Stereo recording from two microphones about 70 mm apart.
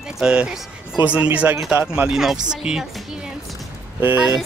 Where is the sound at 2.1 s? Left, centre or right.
Centre.